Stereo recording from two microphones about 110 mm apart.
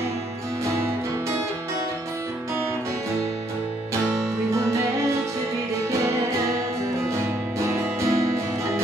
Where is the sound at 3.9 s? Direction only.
25° right (ahead or behind).